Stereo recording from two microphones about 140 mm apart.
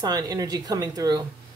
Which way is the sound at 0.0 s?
25° right (ahead or behind).